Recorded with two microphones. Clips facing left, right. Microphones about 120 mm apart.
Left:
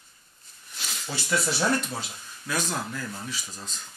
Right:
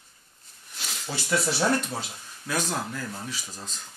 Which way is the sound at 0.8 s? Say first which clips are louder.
Even; 60° right (ahead or behind).